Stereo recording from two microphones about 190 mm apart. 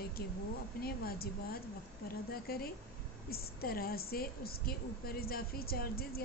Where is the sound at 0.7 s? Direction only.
55° left (ahead or behind).